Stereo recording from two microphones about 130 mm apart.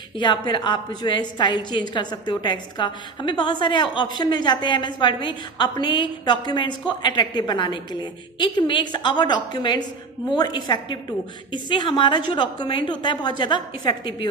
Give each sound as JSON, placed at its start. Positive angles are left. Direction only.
{"t": 0.2, "sound": "a woman's voice", "side_deg": 35}